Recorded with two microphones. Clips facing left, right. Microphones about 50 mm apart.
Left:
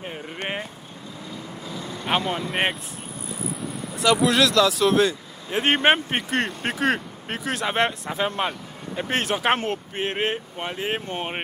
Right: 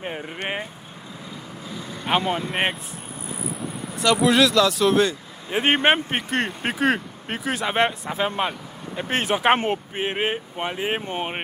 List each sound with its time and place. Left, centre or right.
0.0 s vehicle: centre
2.0 s speech: centre
3.9 s speech: centre